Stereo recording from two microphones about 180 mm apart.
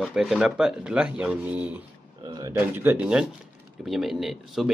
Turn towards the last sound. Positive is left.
turn(degrees=0)  # may be behind; listen again after turning